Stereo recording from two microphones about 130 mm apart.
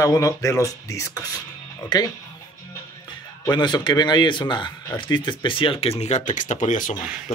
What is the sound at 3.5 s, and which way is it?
Speech, 35° left (ahead or behind).